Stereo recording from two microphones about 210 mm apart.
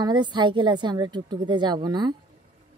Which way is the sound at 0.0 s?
20° right (ahead or behind).